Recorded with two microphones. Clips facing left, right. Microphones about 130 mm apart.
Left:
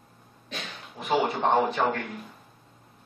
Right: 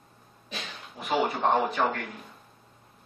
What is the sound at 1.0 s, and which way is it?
Speech, centre (ahead or behind).